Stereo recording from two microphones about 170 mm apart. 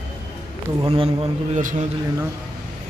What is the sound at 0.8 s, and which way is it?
Speech, 35° right (ahead or behind).